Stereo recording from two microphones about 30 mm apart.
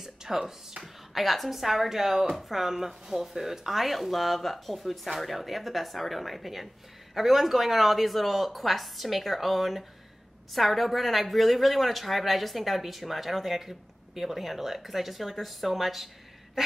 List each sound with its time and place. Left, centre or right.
0.0 s music: centre
1.1 s a woman's voice: centre
16.6 s a sound: centre